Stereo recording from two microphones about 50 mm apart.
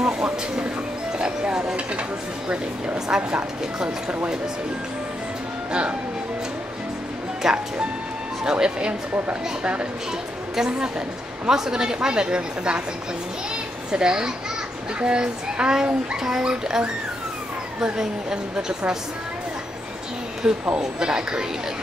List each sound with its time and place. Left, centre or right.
0.0 s vehicle: centre
1.1 s music: centre
2.4 s speech: centre
5.7 s speech: right
7.4 s a woman's voice: centre; by 9.8 s right
10.5 s a woman's voice: centre
13.9 s a woman's voice: centre
20.7 s a woman's voice: centre